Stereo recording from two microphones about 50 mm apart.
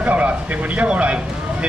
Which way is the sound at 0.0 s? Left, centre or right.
Right.